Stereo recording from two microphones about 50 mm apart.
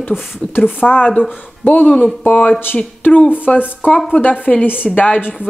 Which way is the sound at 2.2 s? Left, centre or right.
Left.